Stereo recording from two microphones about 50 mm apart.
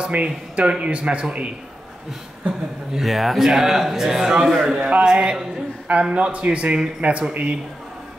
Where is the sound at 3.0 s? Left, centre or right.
Centre.